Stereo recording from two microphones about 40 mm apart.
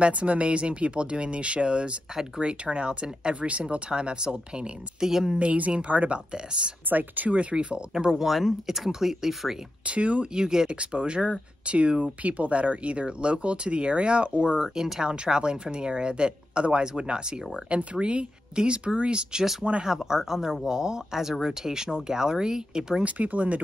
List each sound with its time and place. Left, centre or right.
0.0 s speech: right
5.0 s speech: centre
5.4 s speech: right
6.3 s speech: right
6.9 s speech: right
7.5 s speech: centre
8.1 s speech: centre
9.8 s speech: right
10.3 s speech: centre
10.7 s speech: right
14.8 s speech: centre
19.6 s speech: centre
23.0 s speech: right